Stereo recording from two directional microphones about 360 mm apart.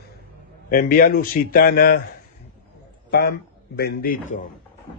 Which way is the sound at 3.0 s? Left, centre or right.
Left.